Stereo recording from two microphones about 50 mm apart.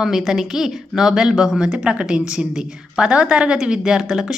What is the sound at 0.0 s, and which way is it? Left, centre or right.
A woman's voice, centre.